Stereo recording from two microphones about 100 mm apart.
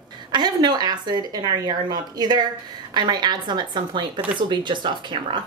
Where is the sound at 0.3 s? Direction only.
45° right (ahead or behind).